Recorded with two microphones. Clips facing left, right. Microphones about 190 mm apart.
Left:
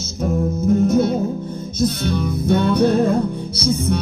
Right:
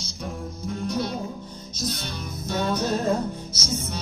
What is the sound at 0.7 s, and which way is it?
Music, 50° left (ahead or behind).